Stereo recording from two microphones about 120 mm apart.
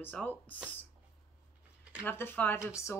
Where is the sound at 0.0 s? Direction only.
15° left (ahead or behind).